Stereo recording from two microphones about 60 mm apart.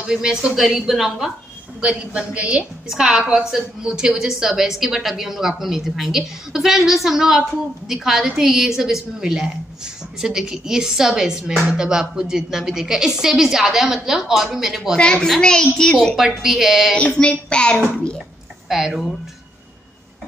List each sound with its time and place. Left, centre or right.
0.0 s a woman's voice: centre
1.8 s a woman's voice: centre
2.9 s a woman's voice: centre
15.0 s a child's voice: centre
16.2 s a woman's voice: centre
17.2 s a child's voice: centre
18.7 s a woman's voice: centre